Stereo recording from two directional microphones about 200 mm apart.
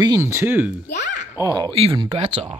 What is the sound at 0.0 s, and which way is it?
Speech, 15° right (ahead or behind).